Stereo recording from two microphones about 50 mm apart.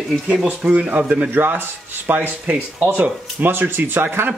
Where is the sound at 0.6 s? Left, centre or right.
Right.